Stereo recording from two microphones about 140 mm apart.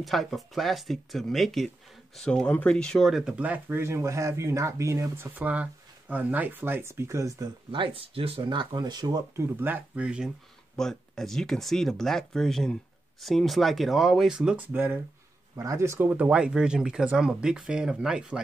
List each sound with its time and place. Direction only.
0.0 s speech: centre (ahead or behind); by 7.4 s 20° right (ahead or behind)
7.7 s speech: 40° right (ahead or behind)
9.6 s speech: 15° right (ahead or behind)
15.5 s speech: 20° right (ahead or behind); by 18.4 s 5° right (ahead or behind)